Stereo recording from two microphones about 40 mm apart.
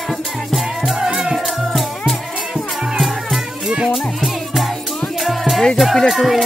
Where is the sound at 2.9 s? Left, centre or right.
Centre.